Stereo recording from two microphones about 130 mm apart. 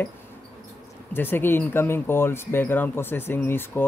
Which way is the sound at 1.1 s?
15° left (ahead or behind).